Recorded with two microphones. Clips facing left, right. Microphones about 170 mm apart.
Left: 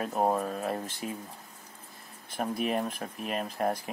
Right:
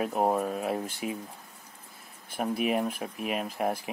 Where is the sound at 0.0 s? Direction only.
10° right (ahead or behind).